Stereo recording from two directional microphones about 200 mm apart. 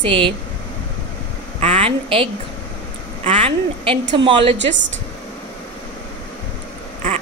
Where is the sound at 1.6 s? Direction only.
30° right (ahead or behind).